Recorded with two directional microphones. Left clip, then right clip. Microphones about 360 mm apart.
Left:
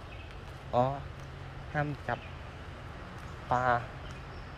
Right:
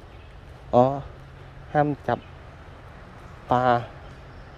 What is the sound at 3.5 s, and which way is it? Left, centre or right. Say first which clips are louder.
Speech: right 8 dB; right.